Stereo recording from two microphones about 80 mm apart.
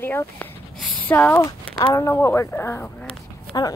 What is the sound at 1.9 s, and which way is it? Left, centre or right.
Speech, left.